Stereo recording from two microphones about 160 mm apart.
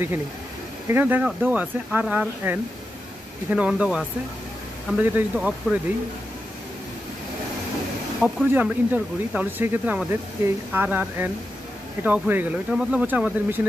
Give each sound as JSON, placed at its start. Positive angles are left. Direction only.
{"t": 0.8, "sound": "speech", "side_deg": -10}
{"t": 5.0, "sound": "speech", "side_deg": -10}
{"t": 8.5, "sound": "speech", "side_deg": -10}